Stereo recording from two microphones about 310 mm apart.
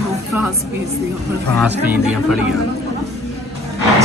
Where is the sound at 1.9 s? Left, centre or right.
Centre.